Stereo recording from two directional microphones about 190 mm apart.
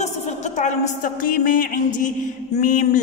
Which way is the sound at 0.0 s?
40° left (ahead or behind).